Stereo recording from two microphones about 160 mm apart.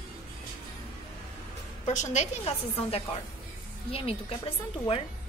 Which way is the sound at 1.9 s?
45° left (ahead or behind).